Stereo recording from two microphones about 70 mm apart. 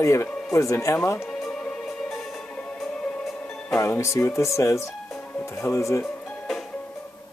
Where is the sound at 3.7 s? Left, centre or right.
Left.